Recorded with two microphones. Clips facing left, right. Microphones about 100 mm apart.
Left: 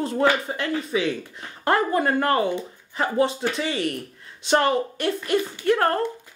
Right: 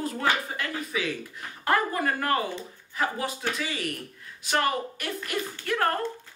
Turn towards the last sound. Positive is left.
turn(degrees=30)  # may be behind; listen again after turning